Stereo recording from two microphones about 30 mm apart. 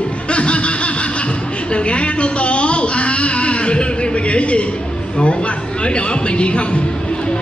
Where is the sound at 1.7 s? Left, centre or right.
Left.